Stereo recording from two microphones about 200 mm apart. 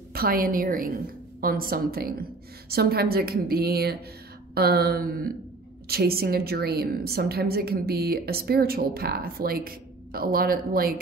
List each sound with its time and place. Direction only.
0.1 s a woman's voice: 50° right (ahead or behind)